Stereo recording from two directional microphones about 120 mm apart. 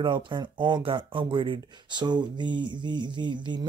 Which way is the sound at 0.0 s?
40° right (ahead or behind).